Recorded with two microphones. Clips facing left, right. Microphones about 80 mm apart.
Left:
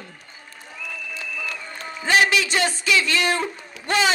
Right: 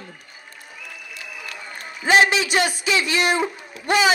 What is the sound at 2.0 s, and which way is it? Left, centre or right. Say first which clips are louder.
Speech: right 2 dB; right.